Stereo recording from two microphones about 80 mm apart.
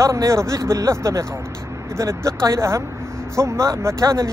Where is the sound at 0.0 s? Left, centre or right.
Right.